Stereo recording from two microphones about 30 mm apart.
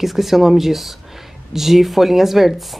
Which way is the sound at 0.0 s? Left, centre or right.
Centre.